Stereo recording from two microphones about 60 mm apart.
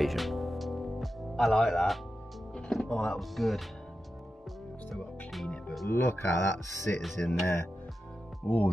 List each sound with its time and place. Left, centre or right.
0.0 s music: centre
2.7 s speech: centre
3.2 s speech: centre
4.9 s music: centre
5.9 s speech: left